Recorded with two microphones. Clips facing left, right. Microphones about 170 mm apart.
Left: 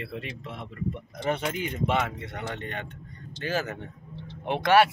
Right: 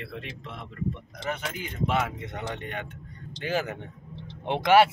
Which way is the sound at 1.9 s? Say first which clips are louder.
Even; 5° right (ahead or behind).